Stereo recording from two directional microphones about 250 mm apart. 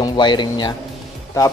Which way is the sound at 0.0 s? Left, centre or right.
Centre.